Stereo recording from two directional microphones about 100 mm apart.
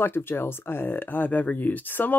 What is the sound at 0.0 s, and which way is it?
Speech, 25° left (ahead or behind).